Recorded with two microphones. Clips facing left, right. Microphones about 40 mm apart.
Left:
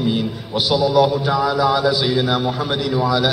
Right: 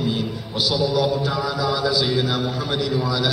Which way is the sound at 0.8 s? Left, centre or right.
Left.